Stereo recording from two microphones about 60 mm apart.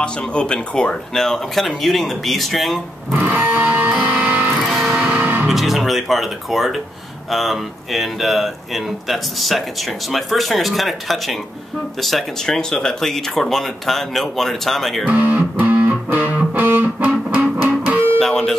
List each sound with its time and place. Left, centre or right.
0.0 s speech: centre
3.2 s music: right
4.6 s music: centre
5.1 s music: right
5.5 s speech: centre
15.0 s music: right
18.2 s music: centre